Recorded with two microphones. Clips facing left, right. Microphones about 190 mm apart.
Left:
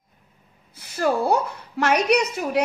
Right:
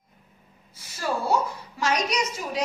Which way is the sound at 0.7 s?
60° left (ahead or behind).